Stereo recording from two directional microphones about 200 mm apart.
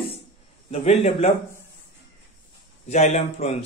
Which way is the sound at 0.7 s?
35° left (ahead or behind).